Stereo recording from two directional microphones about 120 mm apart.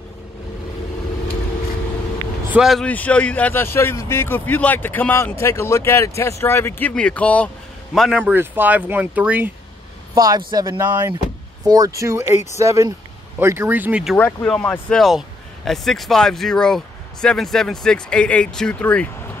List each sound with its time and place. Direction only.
2.5 s speech: 5° right (ahead or behind)
2.8 s a man's voice: 10° left (ahead or behind)
8.2 s speech: 15° right (ahead or behind)
10.1 s speech: 35° right (ahead or behind); by 14.0 s 15° right (ahead or behind)
14.1 s a man's voice: 15° left (ahead or behind)